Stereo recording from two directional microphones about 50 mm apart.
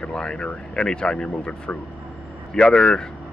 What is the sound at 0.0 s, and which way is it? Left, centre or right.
Speech, centre.